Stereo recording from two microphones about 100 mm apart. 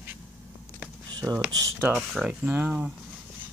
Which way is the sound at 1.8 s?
10° right (ahead or behind).